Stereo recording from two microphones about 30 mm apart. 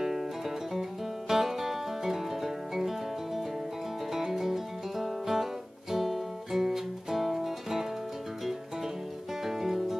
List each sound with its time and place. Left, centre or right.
0.0 s music: centre
1.3 s music: centre
9.4 s music: centre